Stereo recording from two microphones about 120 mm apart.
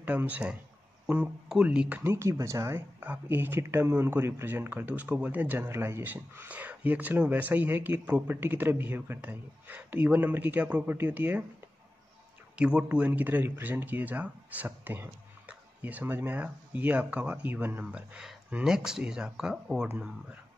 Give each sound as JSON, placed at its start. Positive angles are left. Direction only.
{"t": 0.0, "sound": "speech", "side_deg": -15}
{"t": 12.5, "sound": "speech", "side_deg": -10}